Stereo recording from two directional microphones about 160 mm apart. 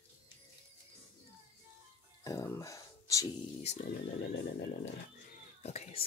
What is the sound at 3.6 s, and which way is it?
Speech, 45° left (ahead or behind).